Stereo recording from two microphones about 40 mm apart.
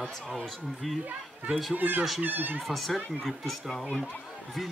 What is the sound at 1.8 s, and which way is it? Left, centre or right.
Speech, right.